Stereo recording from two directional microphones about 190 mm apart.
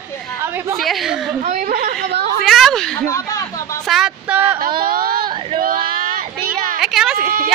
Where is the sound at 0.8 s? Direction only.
Centre (ahead or behind).